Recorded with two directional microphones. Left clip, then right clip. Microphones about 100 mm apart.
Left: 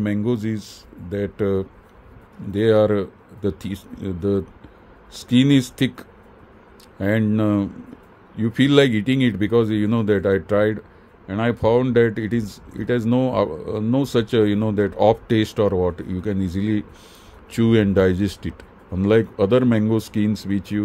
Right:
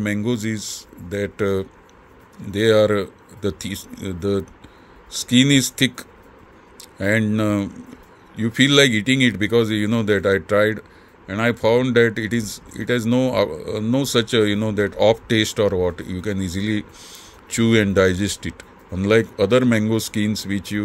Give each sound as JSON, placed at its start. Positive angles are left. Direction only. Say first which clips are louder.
{"t": 0.0, "sound": "speech", "louder": "even", "side_deg": 35}